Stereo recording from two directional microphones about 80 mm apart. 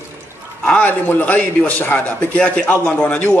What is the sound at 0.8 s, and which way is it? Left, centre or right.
A man's voice, left.